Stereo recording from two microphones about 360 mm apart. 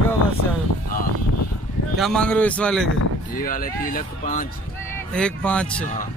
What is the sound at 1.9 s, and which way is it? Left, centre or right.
Speech, centre.